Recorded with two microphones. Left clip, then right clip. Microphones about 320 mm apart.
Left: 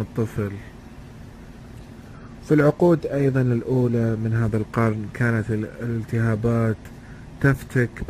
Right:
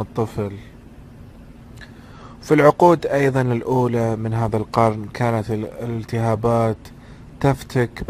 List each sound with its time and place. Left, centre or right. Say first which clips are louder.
0.1 s a man's voice: right 3 dB; centre
2.4 s speech: right 5 dB; right
3.6 s speech: right 5 dB; right
3.9 s a man's voice: right 3 dB; right